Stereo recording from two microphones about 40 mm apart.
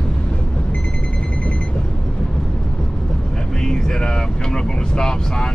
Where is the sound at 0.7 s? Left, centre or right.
Left.